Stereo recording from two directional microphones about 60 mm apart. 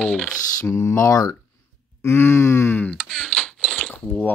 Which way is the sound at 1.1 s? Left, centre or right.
Left.